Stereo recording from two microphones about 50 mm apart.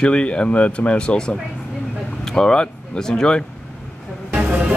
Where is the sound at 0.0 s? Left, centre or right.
Left.